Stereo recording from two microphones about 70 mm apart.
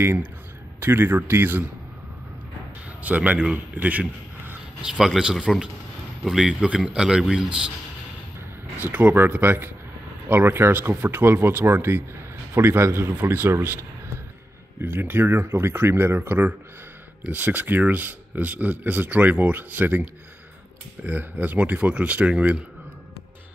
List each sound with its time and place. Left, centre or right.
0.0 s speech: right
3.0 s a man's voice: right
4.8 s a man's voice: centre
8.7 s speech: right